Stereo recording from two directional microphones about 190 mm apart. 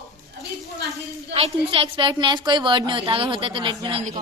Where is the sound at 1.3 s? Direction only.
30° right (ahead or behind).